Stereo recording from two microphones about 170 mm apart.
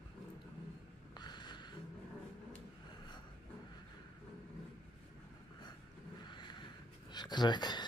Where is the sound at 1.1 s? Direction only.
25° left (ahead or behind).